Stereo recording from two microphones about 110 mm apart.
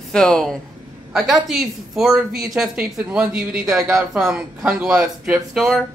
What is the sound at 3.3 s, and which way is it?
A woman's voice, 5° right (ahead or behind).